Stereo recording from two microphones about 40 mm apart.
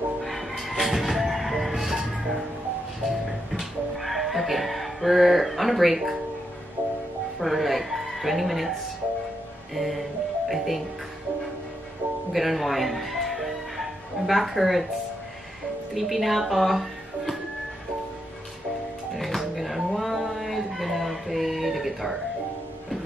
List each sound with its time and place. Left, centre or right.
0.2 s music: centre
3.5 s music: centre
6.8 s music: right
7.3 s music: centre
9.8 s music: centre
12.3 s music: centre
15.9 s speech: centre
19.1 s music: centre